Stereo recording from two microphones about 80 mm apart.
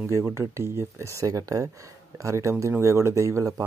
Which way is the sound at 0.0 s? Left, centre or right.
Right.